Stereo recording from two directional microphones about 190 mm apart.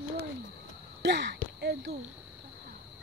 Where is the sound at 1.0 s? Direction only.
65° right (ahead or behind).